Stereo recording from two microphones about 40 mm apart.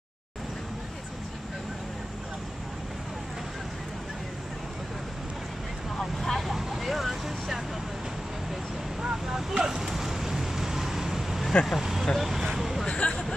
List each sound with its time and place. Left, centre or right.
5.9 s vehicle: centre
9.0 s vehicle: centre
12.8 s hubbub: left